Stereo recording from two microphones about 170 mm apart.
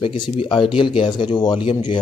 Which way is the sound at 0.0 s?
30° left (ahead or behind).